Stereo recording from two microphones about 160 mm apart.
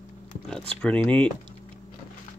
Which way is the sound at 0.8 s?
10° left (ahead or behind).